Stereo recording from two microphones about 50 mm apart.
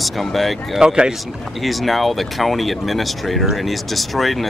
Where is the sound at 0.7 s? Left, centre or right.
Centre.